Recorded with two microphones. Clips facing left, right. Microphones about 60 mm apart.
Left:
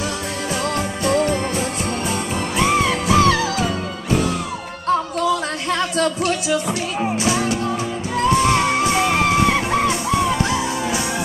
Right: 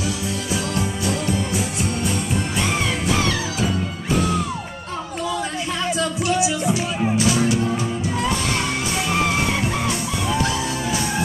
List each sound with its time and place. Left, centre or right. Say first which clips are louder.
1.0 s music: left 10 dB; left
5.9 s music: left 1 dB; left
7.0 s music: left 1 dB; left